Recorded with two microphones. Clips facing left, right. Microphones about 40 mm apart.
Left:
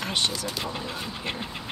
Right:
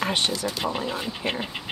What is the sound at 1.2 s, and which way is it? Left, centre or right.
Speech, right.